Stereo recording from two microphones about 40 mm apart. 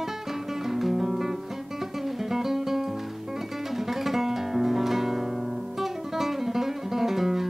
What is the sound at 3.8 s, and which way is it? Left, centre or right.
Guitar, centre.